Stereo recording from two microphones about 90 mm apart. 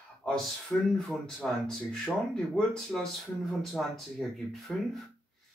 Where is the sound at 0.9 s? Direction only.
Centre (ahead or behind).